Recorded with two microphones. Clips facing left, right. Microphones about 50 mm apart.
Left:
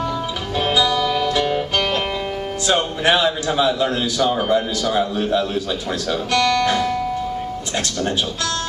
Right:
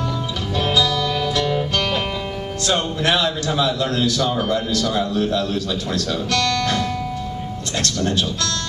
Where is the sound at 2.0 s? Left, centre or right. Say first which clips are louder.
Left 2 dB; centre.